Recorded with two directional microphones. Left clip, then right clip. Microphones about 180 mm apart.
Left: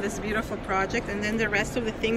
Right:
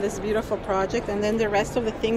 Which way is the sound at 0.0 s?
15° right (ahead or behind).